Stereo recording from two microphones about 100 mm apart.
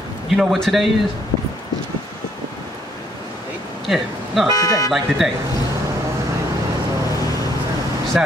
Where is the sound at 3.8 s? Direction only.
Centre (ahead or behind).